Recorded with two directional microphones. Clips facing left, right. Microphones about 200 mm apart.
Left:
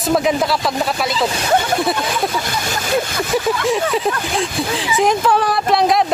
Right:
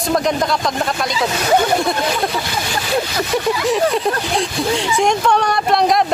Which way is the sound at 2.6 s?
45° left (ahead or behind).